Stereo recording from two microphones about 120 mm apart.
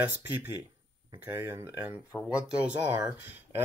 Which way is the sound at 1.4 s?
20° right (ahead or behind).